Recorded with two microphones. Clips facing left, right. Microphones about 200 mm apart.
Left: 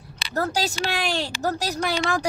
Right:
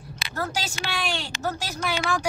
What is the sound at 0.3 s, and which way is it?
A woman's voice, 40° left (ahead or behind).